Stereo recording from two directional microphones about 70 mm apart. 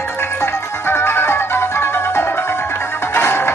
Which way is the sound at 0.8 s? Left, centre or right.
Left.